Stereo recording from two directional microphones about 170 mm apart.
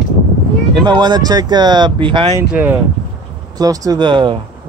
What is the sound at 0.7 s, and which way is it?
Speech, 25° right (ahead or behind).